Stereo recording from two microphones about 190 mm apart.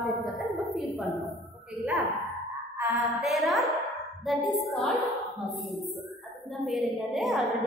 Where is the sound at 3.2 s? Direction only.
Centre (ahead or behind).